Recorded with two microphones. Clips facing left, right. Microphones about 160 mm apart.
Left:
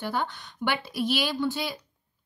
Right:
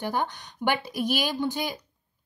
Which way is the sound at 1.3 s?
15° right (ahead or behind).